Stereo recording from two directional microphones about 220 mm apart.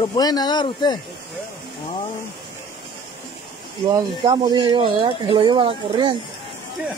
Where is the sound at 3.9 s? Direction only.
20° right (ahead or behind).